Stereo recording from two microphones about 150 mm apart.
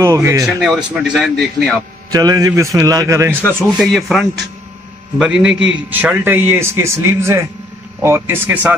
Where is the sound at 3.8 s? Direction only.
Centre (ahead or behind).